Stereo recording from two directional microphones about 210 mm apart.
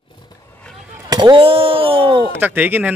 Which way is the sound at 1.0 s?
20° right (ahead or behind).